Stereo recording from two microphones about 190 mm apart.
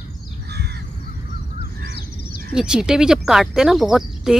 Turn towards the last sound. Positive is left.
turn(degrees=0)  # may be behind; listen again after turning